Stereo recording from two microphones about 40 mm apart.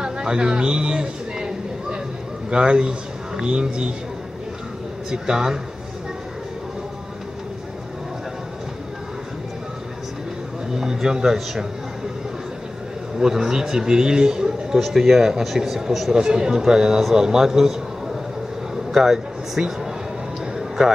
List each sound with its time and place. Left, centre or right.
0.0 s a sound: right
2.5 s a man's voice: right
5.1 s a man's voice: centre
10.7 s a man's voice: centre
13.2 s a man's voice: centre
14.8 s speech: centre
16.1 s a man's voice: centre
20.5 s music: centre